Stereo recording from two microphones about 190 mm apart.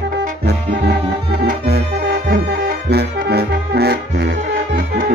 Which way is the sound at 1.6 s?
60° right (ahead or behind).